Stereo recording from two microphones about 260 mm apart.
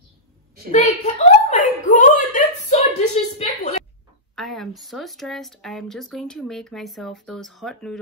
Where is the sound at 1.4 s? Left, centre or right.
Left.